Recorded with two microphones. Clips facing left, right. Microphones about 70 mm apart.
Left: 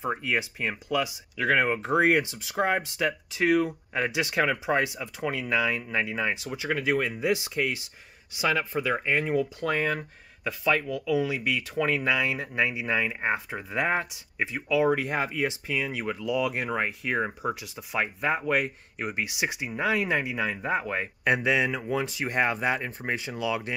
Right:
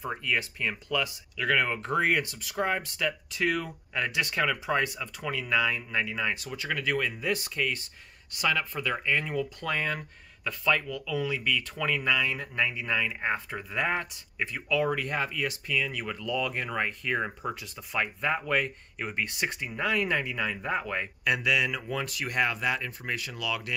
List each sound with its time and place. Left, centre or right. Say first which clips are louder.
0.0 s speech: left 2 dB; left
1.3 s speech: left 3 dB; left
1.8 s speech: left 4 dB; centre
6.5 s speech: left 3 dB; centre
21.2 s speech: left 3 dB; left